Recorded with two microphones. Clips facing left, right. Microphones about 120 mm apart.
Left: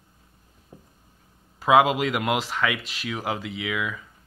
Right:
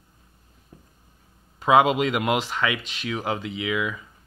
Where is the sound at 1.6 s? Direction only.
Centre (ahead or behind).